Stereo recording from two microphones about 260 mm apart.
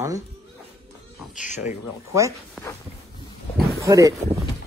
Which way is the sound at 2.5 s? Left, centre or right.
Centre.